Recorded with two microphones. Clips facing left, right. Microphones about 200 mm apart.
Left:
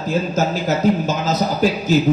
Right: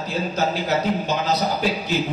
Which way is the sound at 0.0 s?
45° left (ahead or behind).